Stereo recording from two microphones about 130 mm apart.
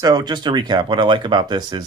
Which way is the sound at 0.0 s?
30° right (ahead or behind).